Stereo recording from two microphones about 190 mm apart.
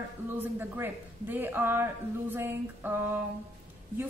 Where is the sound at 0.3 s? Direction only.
10° right (ahead or behind).